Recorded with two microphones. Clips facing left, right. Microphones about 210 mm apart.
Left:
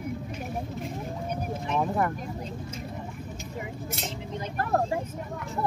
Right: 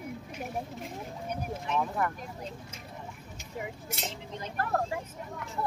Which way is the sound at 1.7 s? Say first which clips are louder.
Left 4 dB; 30° left (ahead or behind).